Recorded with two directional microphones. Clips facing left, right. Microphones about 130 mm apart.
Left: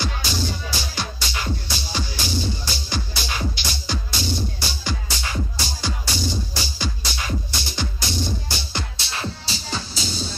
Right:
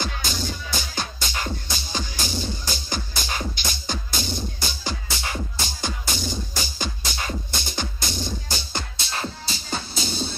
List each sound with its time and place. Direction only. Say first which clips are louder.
0.0 s music: left 2 dB; 45° right (ahead or behind)